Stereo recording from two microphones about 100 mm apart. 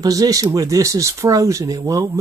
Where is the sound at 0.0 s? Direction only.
35° right (ahead or behind).